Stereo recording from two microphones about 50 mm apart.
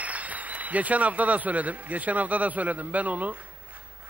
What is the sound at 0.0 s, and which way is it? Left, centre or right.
A man's voice, right.